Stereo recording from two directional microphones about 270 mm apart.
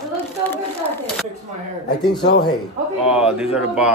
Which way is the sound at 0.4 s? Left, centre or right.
Centre.